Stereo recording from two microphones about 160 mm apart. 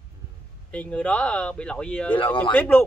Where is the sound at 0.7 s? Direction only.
10° left (ahead or behind).